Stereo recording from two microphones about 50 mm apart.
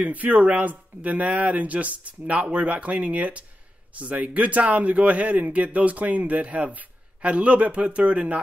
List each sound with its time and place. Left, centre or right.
0.0 s speech: right